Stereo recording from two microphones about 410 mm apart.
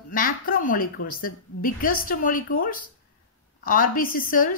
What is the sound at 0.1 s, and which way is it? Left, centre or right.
A woman's voice, centre.